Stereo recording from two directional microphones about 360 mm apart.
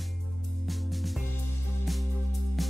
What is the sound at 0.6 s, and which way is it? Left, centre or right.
Music, centre.